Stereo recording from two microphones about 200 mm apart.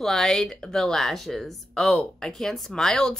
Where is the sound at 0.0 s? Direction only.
Centre (ahead or behind).